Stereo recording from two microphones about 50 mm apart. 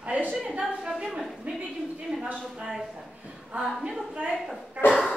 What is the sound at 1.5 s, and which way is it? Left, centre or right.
Speech, right.